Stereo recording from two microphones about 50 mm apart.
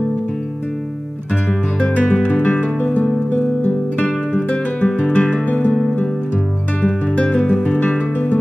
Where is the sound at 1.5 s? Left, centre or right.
Left.